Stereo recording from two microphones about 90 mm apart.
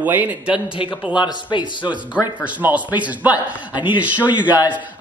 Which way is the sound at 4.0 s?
15° right (ahead or behind).